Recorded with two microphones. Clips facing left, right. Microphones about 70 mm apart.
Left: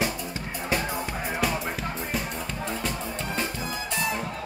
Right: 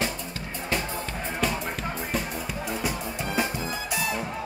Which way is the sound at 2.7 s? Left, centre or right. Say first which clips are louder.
Right 1 dB; centre.